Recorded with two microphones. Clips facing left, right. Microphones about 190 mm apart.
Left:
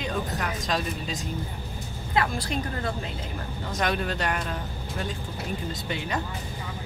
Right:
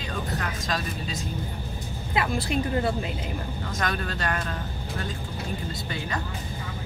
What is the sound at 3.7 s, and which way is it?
Speech, 20° left (ahead or behind).